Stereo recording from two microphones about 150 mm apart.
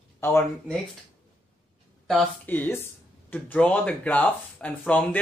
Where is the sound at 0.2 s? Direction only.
15° left (ahead or behind).